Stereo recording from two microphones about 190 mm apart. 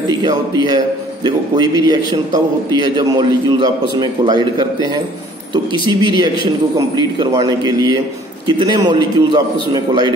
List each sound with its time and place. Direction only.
0.1 s a man's voice: 20° right (ahead or behind)